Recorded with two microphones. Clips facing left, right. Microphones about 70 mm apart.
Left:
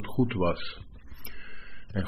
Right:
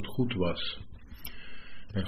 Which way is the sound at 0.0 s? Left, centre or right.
Left.